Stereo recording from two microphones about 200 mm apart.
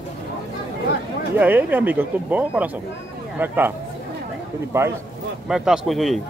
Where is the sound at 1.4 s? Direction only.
10° right (ahead or behind).